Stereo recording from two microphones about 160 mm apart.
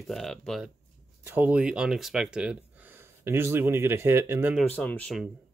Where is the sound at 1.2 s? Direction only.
10° right (ahead or behind).